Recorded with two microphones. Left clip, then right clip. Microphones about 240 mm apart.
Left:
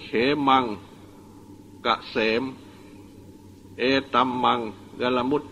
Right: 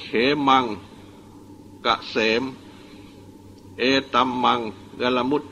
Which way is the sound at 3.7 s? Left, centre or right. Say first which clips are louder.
Right 2 dB; left.